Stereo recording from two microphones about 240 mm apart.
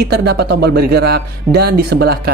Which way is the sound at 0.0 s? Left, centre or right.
Right.